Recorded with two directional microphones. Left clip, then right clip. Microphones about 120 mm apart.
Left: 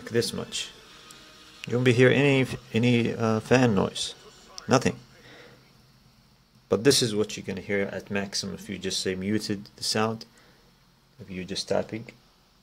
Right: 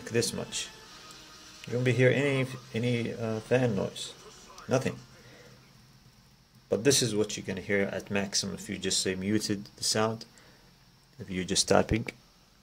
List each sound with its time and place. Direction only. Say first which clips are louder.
0.0 s speech: left 3 dB; 15° left (ahead or behind)
1.6 s speech: left 5 dB; 45° left (ahead or behind)
6.7 s speech: left 4 dB; 30° left (ahead or behind)
11.2 s speech: right 3 dB; 30° right (ahead or behind)
11.8 s speech: right 3 dB; 65° right (ahead or behind)